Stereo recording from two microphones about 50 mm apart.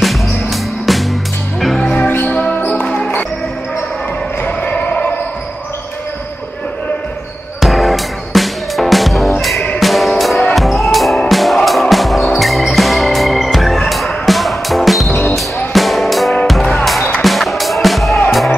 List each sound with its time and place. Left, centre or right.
0.0 s music: centre
2.0 s music: left
2.8 s music: centre
4.4 s basketball bounce: left
4.7 s basketball bounce: left
7.6 s music: centre